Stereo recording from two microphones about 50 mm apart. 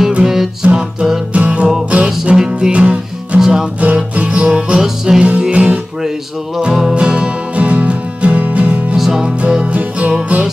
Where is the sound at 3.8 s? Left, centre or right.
Right.